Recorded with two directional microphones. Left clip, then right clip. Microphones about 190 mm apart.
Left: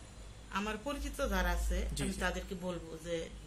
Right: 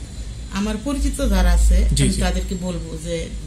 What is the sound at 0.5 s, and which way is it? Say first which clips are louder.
A man's voice: right 12 dB; centre (ahead or behind).